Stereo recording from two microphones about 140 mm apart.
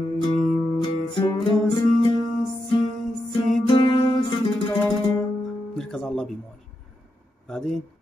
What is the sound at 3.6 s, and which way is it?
Music, 35° left (ahead or behind).